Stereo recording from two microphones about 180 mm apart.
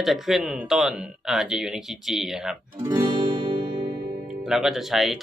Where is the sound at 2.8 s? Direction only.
20° right (ahead or behind).